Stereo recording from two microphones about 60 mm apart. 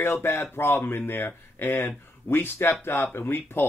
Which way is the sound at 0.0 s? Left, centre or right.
Left.